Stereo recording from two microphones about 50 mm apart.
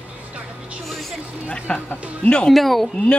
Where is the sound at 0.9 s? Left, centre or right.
Centre.